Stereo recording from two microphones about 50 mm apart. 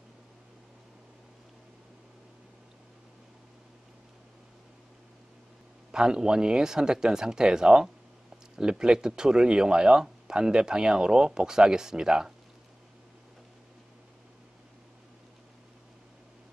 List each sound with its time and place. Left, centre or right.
5.9 s speech: centre